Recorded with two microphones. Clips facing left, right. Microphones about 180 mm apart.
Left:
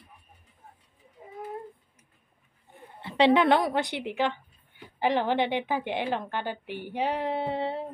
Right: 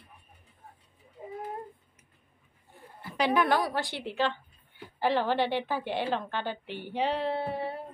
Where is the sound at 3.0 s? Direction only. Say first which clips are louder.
Left 5 dB; 25° left (ahead or behind).